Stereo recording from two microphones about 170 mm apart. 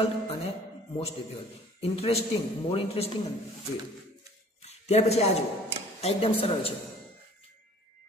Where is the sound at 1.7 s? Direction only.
35° left (ahead or behind).